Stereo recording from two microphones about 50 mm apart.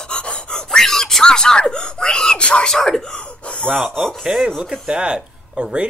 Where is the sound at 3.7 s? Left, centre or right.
Centre.